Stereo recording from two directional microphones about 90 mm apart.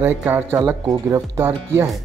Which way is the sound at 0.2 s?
20° right (ahead or behind).